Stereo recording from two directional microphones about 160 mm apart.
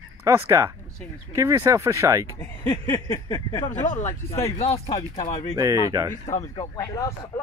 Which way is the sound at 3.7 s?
50° left (ahead or behind).